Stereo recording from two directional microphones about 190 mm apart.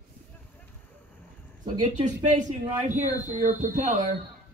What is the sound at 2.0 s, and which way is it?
Speech, 40° right (ahead or behind).